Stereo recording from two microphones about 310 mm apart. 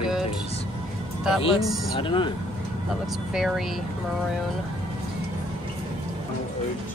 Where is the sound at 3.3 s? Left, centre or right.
Centre.